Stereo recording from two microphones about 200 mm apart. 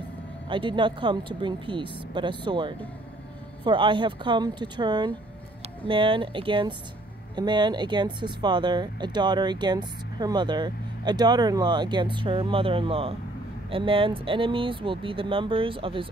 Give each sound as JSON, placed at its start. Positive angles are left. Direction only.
{"t": 0.5, "sound": "speech", "side_deg": -25}